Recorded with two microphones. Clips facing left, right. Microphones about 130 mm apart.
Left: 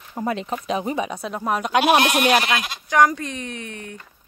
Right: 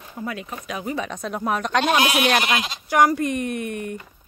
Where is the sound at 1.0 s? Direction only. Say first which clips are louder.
Even; 5° left (ahead or behind).